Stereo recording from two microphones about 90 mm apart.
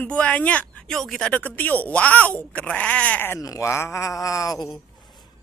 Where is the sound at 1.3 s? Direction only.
20° left (ahead or behind).